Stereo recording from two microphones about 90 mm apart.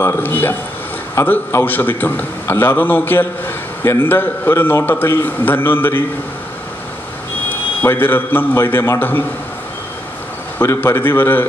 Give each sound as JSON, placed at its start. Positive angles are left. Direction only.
{"t": 0.0, "sound": "a man's voice", "side_deg": 25}
{"t": 7.8, "sound": "a man's voice", "side_deg": 25}
{"t": 10.6, "sound": "a man's voice", "side_deg": 30}